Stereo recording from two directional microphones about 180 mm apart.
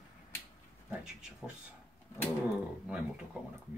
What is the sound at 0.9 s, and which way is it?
Speech, 5° right (ahead or behind).